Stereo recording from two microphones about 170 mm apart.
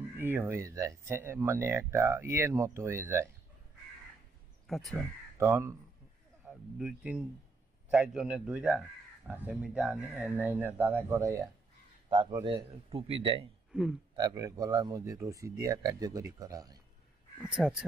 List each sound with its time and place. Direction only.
0.2 s speech: 15° right (ahead or behind)
4.6 s speech: centre (ahead or behind)
5.4 s speech: 15° right (ahead or behind)
6.4 s a man's voice: 5° right (ahead or behind)
12.1 s a man's voice: 25° right (ahead or behind)
13.7 s a sound: 5° right (ahead or behind)
14.1 s a man's voice: 20° right (ahead or behind)
17.4 s a man's voice: 5° right (ahead or behind)